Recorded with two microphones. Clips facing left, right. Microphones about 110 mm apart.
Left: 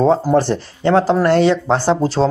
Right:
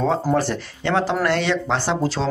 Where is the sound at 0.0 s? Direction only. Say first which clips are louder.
Left 6 dB; 30° left (ahead or behind).